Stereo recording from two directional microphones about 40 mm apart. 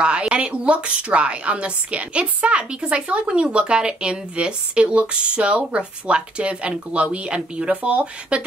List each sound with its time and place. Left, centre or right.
0.0 s a woman's voice: right